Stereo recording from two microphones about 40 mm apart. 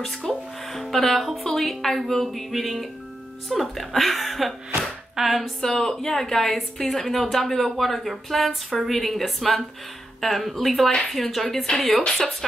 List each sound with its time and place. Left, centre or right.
0.1 s a woman's voice: centre
5.6 s a woman's voice: centre
11.6 s speech: left